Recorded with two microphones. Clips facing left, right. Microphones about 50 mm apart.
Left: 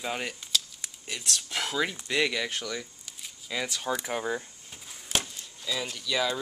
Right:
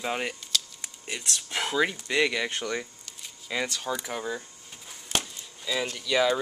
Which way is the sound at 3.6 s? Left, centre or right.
Centre.